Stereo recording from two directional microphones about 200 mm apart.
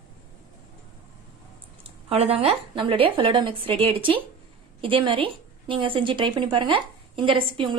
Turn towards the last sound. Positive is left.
turn(degrees=-25)  # may be behind; listen again after turning